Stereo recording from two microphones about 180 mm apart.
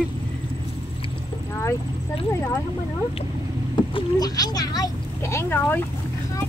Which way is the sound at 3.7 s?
25° left (ahead or behind).